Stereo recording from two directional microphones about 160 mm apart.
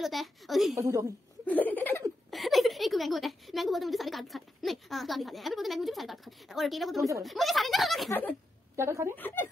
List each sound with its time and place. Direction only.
0.0 s a woman's voice: centre (ahead or behind)
0.7 s a woman's voice: 20° right (ahead or behind)
1.4 s laughter: 10° left (ahead or behind)
2.3 s a woman's voice: centre (ahead or behind)
8.1 s speech: 10° left (ahead or behind)
8.7 s speech: 15° right (ahead or behind)
9.1 s speech: 10° left (ahead or behind)